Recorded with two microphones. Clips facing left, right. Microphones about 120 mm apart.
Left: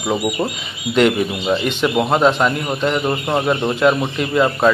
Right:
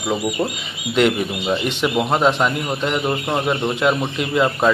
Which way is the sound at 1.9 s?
10° left (ahead or behind).